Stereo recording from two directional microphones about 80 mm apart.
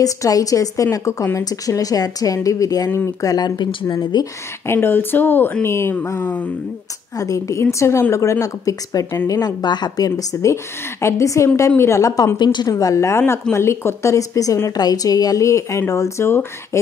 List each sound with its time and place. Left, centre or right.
0.0 s speech: left
4.6 s a woman's voice: left
9.3 s a woman's voice: left
12.4 s a woman's voice: left
12.6 s a woman's voice: left